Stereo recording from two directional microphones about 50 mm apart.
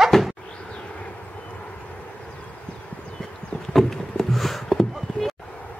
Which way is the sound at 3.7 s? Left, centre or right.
Centre.